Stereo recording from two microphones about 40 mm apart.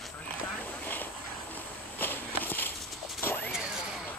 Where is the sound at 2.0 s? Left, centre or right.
Left.